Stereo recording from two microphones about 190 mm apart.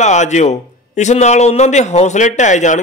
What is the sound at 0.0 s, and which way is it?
A man's voice, 40° left (ahead or behind).